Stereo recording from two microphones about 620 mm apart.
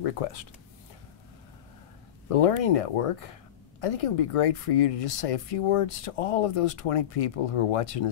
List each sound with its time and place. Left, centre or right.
0.0 s speech: left
2.2 s speech: left